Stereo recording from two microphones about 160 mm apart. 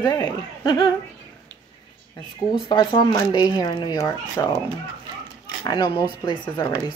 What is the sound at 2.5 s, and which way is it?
Speech, 30° left (ahead or behind).